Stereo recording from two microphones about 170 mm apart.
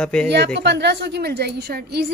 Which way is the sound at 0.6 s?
85° right.